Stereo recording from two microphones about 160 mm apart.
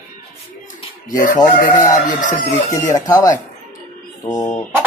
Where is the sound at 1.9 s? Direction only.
55° left (ahead or behind).